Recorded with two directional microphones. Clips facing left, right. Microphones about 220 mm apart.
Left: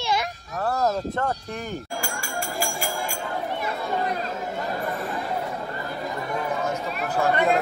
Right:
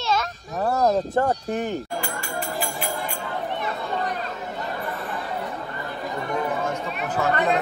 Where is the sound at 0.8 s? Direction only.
20° right (ahead or behind).